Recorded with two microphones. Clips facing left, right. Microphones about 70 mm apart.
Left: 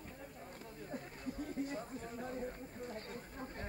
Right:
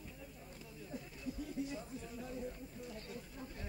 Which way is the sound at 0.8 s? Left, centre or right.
Left.